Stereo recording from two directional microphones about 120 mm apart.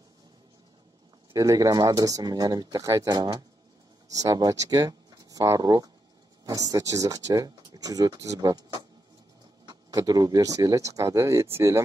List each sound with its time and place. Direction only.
1.3 s speech: 30° right (ahead or behind)